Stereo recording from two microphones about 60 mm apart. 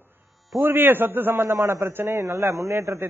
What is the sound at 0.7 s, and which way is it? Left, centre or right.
A man's voice, right.